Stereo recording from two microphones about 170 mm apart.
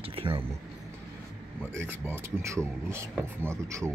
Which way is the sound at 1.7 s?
15° right (ahead or behind).